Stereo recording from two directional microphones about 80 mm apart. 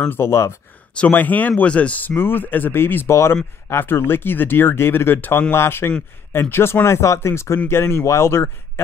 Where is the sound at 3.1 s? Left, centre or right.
Left.